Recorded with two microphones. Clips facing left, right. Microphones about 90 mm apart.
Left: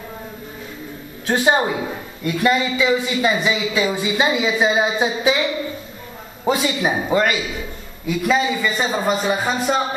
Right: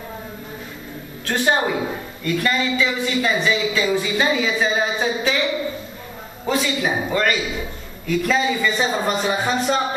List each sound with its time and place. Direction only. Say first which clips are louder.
1.2 s a woman's voice: left 2 dB; 15° left (ahead or behind)
6.4 s a man's voice: left 2 dB; 20° left (ahead or behind)
8.1 s a man's voice: left 1 dB; 5° left (ahead or behind)